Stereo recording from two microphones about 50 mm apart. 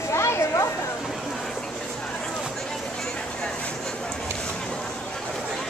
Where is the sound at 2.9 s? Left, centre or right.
Centre.